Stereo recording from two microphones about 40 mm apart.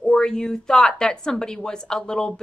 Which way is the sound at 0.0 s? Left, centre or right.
Centre.